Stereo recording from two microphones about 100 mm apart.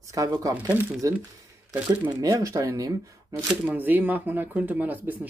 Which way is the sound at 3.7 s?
20° right (ahead or behind).